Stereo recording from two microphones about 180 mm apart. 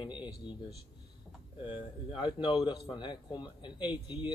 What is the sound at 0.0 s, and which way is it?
Speech, 25° left (ahead or behind).